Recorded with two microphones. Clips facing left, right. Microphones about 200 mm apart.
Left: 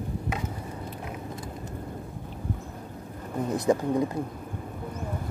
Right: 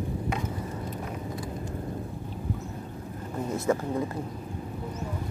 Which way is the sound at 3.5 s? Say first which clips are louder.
Left 3 dB; 15° left (ahead or behind).